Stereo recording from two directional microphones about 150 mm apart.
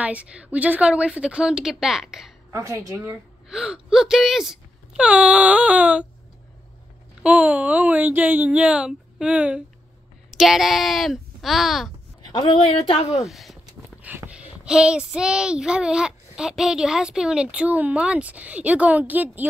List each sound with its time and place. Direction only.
0.0 s a child's voice: 10° right (ahead or behind)
2.5 s a woman's voice: 20° right (ahead or behind)
3.4 s a child's voice: 5° right (ahead or behind)
7.2 s a child's voice: 10° right (ahead or behind)
12.6 s speech: 40° left (ahead or behind)
13.3 s speech: centre (ahead or behind)
14.0 s a sound: 10° right (ahead or behind)
14.6 s a child's voice: 5° right (ahead or behind)